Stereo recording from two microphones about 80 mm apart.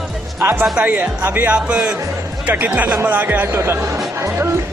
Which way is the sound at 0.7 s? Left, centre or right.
Centre.